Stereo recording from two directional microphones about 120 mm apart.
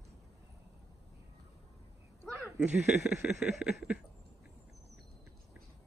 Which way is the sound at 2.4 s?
10° right (ahead or behind).